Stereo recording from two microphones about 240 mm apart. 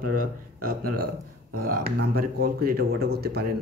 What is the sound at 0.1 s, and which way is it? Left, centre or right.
Speech, right.